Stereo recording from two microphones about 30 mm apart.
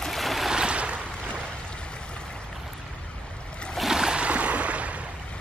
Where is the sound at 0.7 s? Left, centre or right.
Right.